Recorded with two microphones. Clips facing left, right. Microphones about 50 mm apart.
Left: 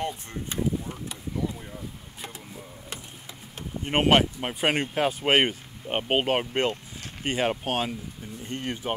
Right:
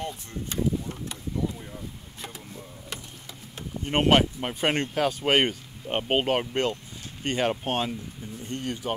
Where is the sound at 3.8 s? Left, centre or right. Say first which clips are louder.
Even; centre.